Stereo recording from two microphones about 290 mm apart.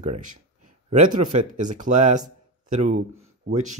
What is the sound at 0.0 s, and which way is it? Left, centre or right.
Speech, right.